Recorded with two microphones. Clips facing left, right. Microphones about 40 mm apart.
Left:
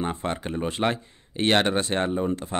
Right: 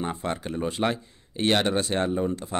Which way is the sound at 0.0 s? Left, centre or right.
Left.